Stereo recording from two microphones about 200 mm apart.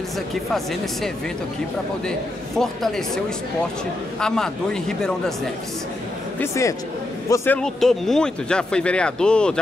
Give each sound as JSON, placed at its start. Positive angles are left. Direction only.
{"t": 2.0, "sound": "speech", "side_deg": 0}
{"t": 4.2, "sound": "speech", "side_deg": 5}
{"t": 6.4, "sound": "speech", "side_deg": 15}